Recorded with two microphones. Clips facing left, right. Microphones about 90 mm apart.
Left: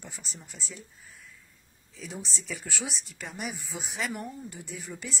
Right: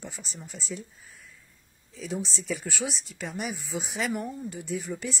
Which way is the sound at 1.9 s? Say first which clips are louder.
Right 7 dB; centre (ahead or behind).